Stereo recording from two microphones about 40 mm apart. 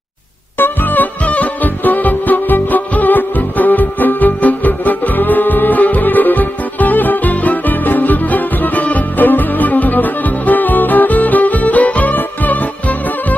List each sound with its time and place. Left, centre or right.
0.6 s music: left